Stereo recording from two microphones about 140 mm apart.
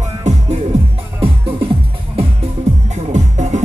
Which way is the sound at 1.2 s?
40° right (ahead or behind).